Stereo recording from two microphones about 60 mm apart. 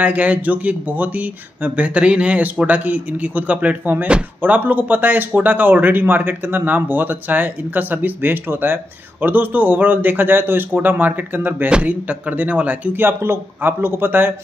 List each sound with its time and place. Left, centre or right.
0.0 s a man's voice: right